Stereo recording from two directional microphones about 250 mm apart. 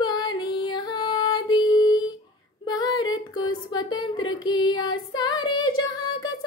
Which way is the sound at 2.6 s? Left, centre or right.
Centre.